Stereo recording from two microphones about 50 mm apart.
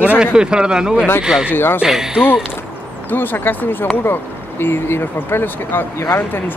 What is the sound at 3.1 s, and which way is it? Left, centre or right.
Speech, left.